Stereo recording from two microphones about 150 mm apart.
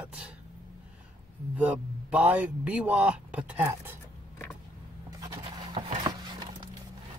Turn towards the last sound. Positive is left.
turn(degrees=-30)  # may be behind; listen again after turning